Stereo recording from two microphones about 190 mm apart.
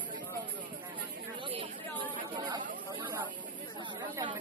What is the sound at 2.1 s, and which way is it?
Chatter, 25° right (ahead or behind).